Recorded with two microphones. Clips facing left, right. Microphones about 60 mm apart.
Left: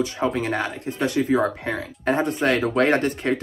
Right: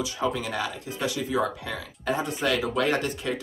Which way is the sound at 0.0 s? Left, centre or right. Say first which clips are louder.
Left 5 dB; left.